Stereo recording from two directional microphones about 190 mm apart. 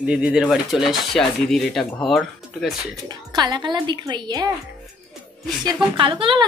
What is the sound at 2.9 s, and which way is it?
Speech, 20° right (ahead or behind).